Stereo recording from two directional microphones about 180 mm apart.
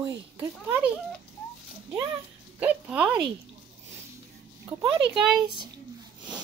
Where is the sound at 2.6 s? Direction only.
10° right (ahead or behind).